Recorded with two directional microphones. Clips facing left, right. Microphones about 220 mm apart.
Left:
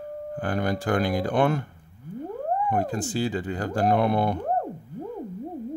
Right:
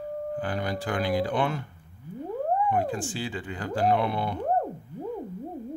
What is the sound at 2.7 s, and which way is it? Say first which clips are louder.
Speech: left 1 dB; 45° left (ahead or behind).